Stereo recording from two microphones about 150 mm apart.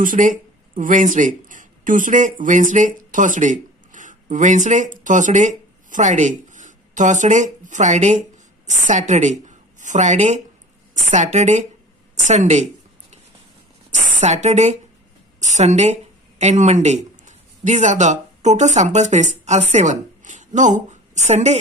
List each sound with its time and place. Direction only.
0.0 s speech: 60° right (ahead or behind)
13.9 s a woman's voice: 50° right (ahead or behind)